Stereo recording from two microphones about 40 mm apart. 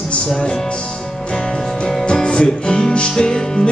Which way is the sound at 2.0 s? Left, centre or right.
Left.